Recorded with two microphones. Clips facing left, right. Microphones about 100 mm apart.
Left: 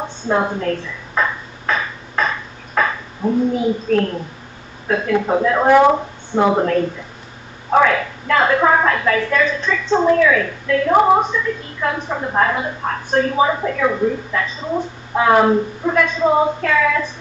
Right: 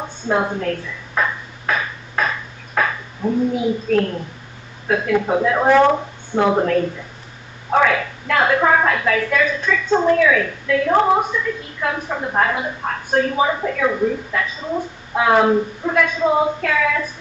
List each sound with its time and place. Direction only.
0.3 s a sound: centre (ahead or behind)
3.2 s speech: 20° left (ahead or behind)
3.5 s a woman's voice: centre (ahead or behind)
5.7 s speech: 10° left (ahead or behind)
6.3 s a woman's voice: centre (ahead or behind)
10.9 s speech: 10° left (ahead or behind)
11.1 s a woman's voice: centre (ahead or behind)